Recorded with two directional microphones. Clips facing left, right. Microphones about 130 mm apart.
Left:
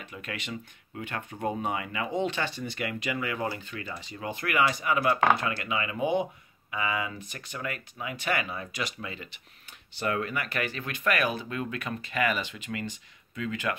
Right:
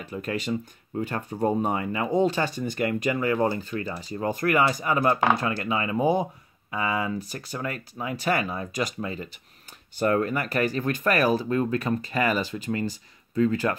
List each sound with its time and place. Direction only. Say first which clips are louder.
0.0 s speech: right 9 dB; 35° right (ahead or behind)